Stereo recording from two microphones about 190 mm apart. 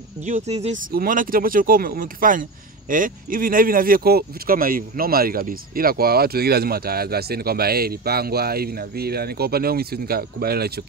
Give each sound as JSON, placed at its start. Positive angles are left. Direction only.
{"t": 0.2, "sound": "speech", "side_deg": -35}
{"t": 0.9, "sound": "speech", "side_deg": -45}